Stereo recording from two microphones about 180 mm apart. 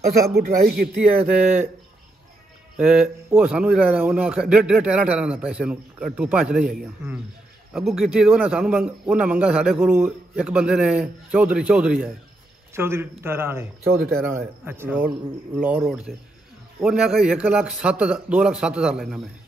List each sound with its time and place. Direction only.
0.3 s speech: 60° right (ahead or behind)
1.1 s a man's voice: 10° right (ahead or behind)
2.8 s a man's voice: 5° right (ahead or behind)
13.8 s speech: 55° right (ahead or behind)
14.2 s a man's voice: 10° right (ahead or behind)